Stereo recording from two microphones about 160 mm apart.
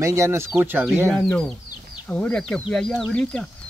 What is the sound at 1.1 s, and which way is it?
Speech, 5° left (ahead or behind).